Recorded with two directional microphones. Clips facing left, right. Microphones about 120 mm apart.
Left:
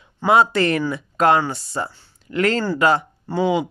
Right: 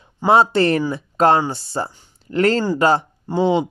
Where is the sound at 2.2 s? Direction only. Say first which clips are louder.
Right 3 dB; 35° right (ahead or behind).